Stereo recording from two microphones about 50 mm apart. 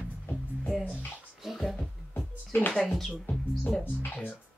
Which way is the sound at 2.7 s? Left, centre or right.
Centre.